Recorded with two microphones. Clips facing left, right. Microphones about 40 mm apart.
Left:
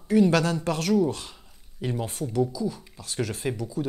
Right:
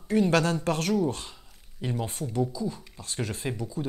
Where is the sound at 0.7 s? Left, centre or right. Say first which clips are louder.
Left 1 dB; centre.